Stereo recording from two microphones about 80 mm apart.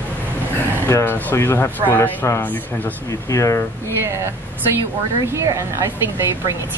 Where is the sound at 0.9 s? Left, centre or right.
Left.